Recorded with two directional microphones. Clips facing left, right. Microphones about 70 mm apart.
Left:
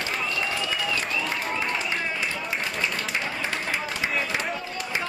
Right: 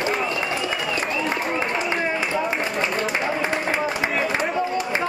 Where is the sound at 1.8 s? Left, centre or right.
Right.